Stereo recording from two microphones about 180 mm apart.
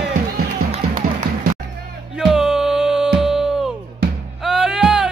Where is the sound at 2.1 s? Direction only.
5° right (ahead or behind).